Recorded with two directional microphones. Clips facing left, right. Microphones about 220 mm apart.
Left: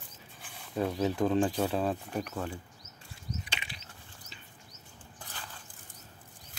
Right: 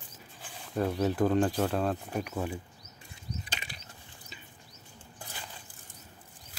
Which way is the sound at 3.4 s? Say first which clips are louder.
Right 1 dB; 40° right (ahead or behind).